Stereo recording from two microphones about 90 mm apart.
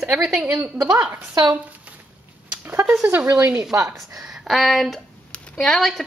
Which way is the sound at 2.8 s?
5° right (ahead or behind).